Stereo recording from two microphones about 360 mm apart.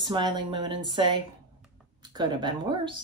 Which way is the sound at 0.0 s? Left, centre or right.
Centre.